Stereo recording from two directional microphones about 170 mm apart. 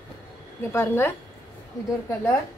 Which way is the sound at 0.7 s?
15° left (ahead or behind).